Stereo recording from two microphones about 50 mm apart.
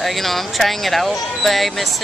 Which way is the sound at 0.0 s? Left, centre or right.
Centre.